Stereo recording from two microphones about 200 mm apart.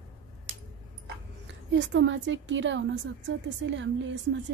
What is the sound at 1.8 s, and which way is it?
A woman's voice, 65° right (ahead or behind).